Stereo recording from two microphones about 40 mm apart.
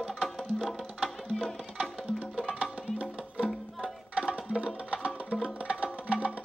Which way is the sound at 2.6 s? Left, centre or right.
Right.